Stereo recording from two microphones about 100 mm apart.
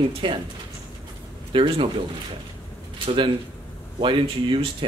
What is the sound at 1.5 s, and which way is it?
Speech, 60° right (ahead or behind).